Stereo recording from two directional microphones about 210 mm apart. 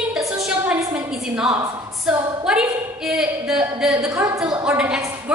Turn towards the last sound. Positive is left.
turn(degrees=-5)  # may be behind; listen again after turning